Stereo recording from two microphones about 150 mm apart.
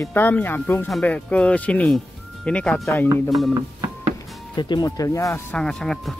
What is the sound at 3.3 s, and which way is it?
Speech, centre (ahead or behind).